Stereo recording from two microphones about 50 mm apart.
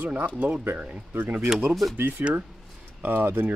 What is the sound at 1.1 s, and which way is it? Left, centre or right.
Speech, right.